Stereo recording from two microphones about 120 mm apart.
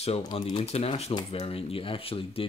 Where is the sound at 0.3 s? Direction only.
55° left (ahead or behind).